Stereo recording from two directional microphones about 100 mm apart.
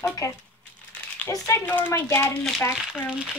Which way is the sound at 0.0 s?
30° left (ahead or behind).